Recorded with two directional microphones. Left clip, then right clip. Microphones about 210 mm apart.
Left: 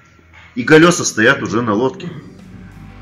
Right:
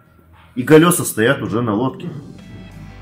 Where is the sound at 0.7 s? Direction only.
40° right (ahead or behind).